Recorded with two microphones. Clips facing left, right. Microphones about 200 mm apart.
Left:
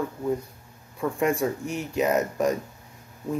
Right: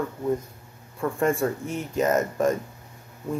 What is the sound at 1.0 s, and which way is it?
Speech, 10° left (ahead or behind).